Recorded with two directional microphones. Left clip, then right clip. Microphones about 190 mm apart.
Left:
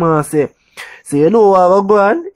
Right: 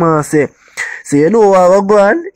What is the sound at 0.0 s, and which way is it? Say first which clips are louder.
Speech: right 2 dB; 20° right (ahead or behind).